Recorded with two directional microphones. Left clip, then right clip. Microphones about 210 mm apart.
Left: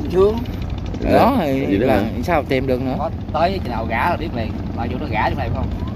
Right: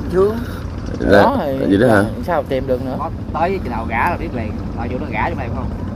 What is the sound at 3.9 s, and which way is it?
Speech, 20° left (ahead or behind).